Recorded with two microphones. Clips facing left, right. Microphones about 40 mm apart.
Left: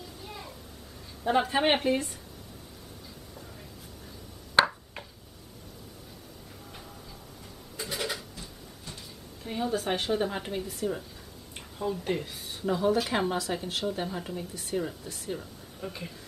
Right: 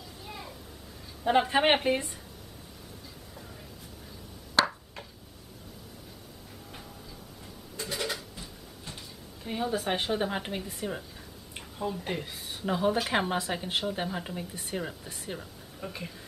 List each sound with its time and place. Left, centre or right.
0.2 s a sound: centre
1.2 s a woman's voice: centre
4.6 s a sound: left
7.8 s a sound: centre
9.4 s a woman's voice: centre
10.8 s speech: right
11.8 s speech: centre
12.6 s speech: right
13.0 s a woman's voice: centre
13.3 s speech: right
15.3 s speech: centre